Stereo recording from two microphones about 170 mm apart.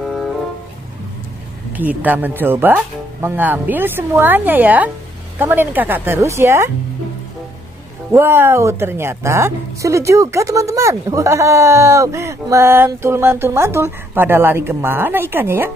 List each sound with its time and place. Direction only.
0.0 s music: centre (ahead or behind)
1.8 s a woman's voice: 10° right (ahead or behind)
8.1 s a woman's voice: 15° right (ahead or behind)